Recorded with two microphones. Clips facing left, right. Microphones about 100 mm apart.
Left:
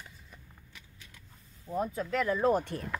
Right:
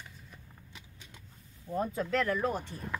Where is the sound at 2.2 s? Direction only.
25° left (ahead or behind).